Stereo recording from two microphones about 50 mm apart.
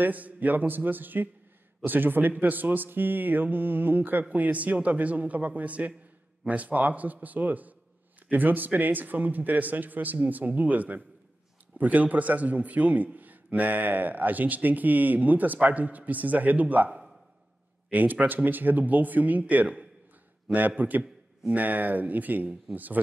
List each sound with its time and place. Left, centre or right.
0.0 s a man's voice: right
17.9 s a man's voice: right